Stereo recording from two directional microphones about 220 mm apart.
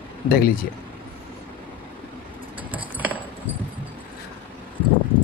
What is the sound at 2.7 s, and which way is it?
Keys jangling, 5° right (ahead or behind).